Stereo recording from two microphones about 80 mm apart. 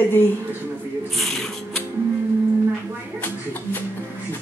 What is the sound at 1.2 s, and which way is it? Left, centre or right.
Music, centre.